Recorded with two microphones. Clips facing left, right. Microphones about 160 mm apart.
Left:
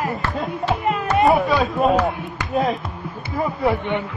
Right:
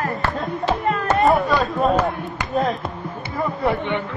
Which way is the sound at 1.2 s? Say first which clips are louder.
Left 1 dB; centre (ahead or behind).